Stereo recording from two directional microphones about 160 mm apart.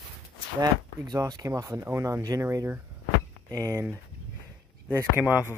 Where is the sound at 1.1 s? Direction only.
25° right (ahead or behind).